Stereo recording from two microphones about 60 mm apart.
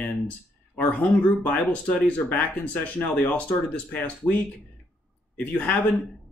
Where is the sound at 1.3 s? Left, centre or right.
Left.